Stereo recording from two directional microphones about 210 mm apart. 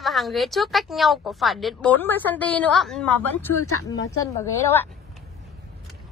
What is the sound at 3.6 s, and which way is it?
Speech, 90° left.